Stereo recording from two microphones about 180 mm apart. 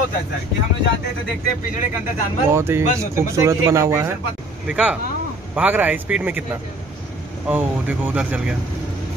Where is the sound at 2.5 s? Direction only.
15° right (ahead or behind).